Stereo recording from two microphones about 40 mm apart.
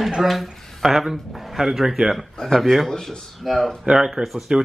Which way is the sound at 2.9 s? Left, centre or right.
Centre.